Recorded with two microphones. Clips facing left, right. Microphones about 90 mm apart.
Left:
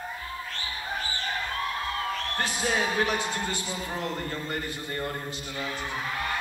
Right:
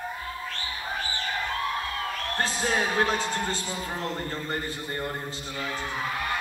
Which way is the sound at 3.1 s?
15° left (ahead or behind).